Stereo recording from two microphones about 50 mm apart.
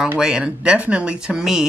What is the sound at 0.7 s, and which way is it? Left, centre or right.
Speech, right.